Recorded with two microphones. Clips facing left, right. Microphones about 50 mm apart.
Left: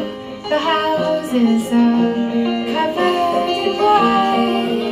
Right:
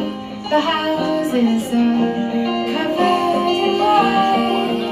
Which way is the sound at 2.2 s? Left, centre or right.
Centre.